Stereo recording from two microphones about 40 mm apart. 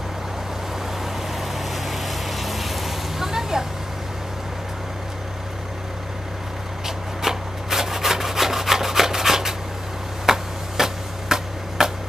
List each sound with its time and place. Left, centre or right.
1.7 s vehicle: centre
7.2 s rub: centre
10.2 s a sound: centre